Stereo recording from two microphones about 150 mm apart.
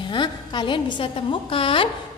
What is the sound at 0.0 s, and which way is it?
A woman's voice, 30° left (ahead or behind).